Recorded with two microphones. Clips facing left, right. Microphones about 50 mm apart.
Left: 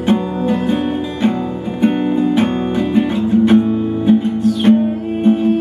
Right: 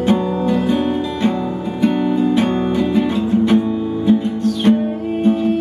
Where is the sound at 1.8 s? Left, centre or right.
Left.